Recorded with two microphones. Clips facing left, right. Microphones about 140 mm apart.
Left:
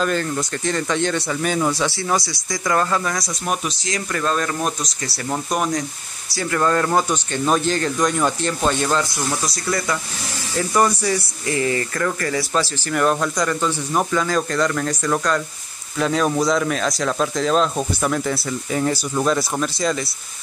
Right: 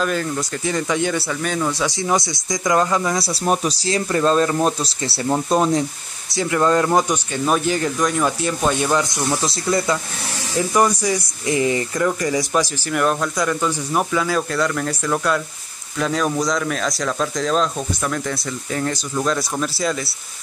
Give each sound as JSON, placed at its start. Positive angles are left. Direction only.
{"t": 0.0, "sound": "speech", "side_deg": -5}
{"t": 1.4, "sound": "speech", "side_deg": 5}
{"t": 1.9, "sound": "speech", "side_deg": -20}
{"t": 3.2, "sound": "speech", "side_deg": -35}
{"t": 10.7, "sound": "speech", "side_deg": -10}
{"t": 12.9, "sound": "speech", "side_deg": 0}